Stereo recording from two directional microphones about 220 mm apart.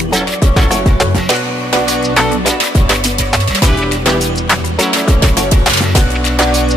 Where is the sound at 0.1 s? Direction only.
Centre (ahead or behind).